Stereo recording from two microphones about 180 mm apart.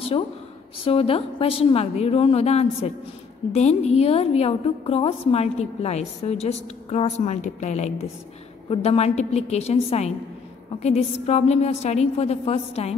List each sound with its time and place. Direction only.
0.8 s a woman's voice: 30° left (ahead or behind)